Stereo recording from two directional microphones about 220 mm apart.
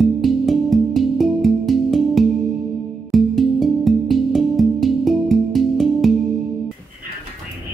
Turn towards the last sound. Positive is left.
turn(degrees=0)  # may be behind; listen again after turning